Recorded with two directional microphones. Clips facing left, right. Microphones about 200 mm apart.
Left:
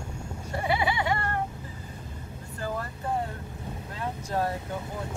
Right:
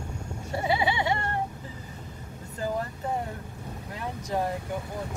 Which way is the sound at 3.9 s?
15° right (ahead or behind).